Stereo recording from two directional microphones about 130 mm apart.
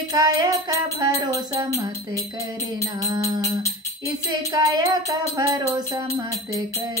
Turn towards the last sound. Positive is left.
turn(degrees=-30)  # may be behind; listen again after turning